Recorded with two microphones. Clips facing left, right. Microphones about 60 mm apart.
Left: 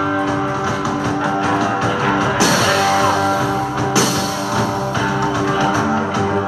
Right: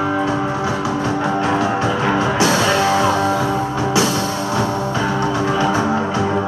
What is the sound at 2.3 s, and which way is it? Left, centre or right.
Music, right.